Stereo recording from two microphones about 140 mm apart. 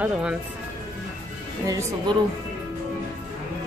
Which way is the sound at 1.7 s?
20° right (ahead or behind).